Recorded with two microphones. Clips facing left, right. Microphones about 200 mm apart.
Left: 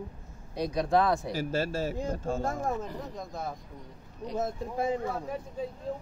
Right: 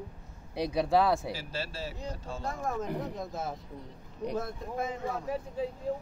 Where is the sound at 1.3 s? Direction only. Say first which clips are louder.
Left 8 dB; 50° left (ahead or behind).